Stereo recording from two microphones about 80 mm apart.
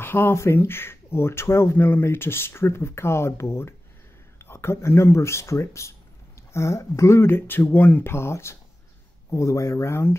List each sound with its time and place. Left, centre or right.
0.0 s speech: left